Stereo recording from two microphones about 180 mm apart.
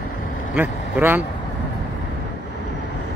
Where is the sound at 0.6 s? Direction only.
10° right (ahead or behind).